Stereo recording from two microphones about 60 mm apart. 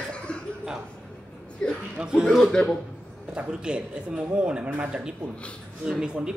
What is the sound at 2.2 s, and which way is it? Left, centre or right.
Speech, centre.